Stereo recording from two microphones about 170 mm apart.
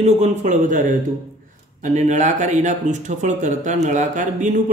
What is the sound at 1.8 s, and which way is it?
Speech, 45° right (ahead or behind).